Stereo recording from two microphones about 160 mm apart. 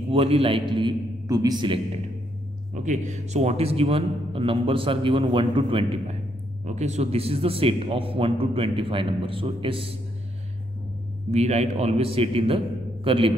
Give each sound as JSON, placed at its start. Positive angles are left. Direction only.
{"t": 0.1, "sound": "a man's voice", "side_deg": -35}
{"t": 2.7, "sound": "a man's voice", "side_deg": -50}
{"t": 6.6, "sound": "a man's voice", "side_deg": -45}
{"t": 11.3, "sound": "a man's voice", "side_deg": -45}